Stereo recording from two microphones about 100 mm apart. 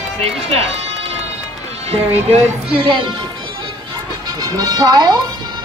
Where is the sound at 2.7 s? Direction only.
60° right (ahead or behind).